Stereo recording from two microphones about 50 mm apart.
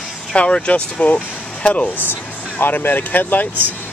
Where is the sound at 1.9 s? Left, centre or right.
Left.